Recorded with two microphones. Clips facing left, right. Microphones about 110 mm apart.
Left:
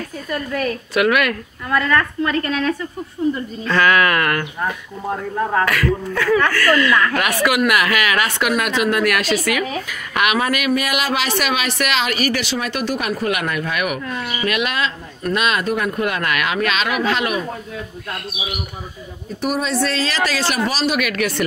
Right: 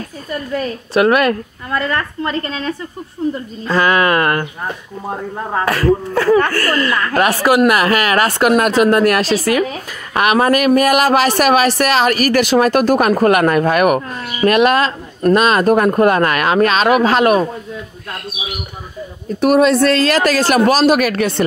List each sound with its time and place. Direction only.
0.5 s a woman's voice: 30° right (ahead or behind); by 17.5 s 45° right (ahead or behind)
19.4 s speech: 65° right (ahead or behind); by 21.5 s 30° right (ahead or behind)